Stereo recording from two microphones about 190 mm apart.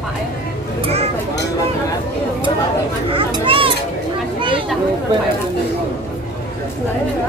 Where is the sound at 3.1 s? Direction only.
25° right (ahead or behind).